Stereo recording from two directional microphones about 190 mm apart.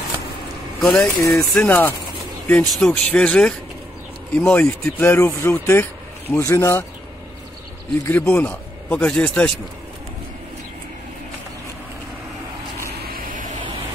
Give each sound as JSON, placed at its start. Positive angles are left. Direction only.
{"t": 0.7, "sound": "speech", "side_deg": 0}
{"t": 8.0, "sound": "speech", "side_deg": 10}
{"t": 13.0, "sound": "vehicle", "side_deg": -50}